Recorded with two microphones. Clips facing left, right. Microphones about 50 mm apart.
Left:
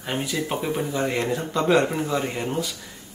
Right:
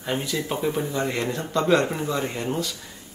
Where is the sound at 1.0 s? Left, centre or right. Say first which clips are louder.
Left 2 dB; centre.